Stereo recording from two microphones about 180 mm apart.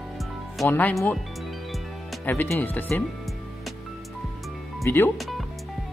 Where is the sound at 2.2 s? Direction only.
10° left (ahead or behind).